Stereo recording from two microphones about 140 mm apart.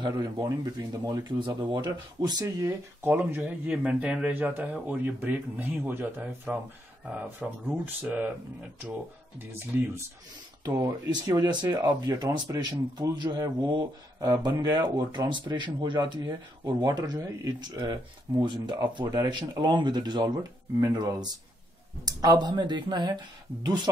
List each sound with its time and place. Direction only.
0.1 s speech: 25° right (ahead or behind)
9.7 s speech: 15° right (ahead or behind)
10.6 s speech: 25° right (ahead or behind)